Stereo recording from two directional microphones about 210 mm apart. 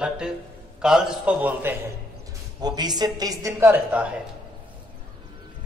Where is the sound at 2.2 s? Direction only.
20° right (ahead or behind).